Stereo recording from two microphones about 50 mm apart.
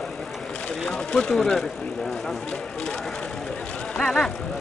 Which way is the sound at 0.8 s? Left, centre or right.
Left.